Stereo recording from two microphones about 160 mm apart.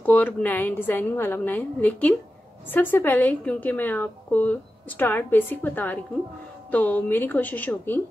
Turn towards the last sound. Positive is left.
turn(degrees=10)  # may be behind; listen again after turning